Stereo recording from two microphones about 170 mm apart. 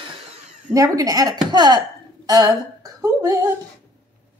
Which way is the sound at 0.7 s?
20° right (ahead or behind).